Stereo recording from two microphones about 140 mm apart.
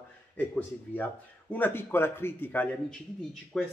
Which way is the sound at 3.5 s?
Centre (ahead or behind).